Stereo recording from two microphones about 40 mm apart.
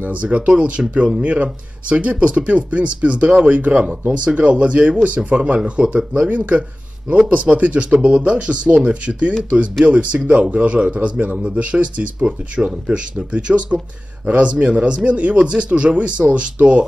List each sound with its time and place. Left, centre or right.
0.0 s speech: right